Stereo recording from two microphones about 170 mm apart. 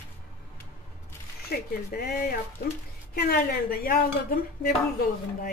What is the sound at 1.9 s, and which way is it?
Speech, 60° left (ahead or behind).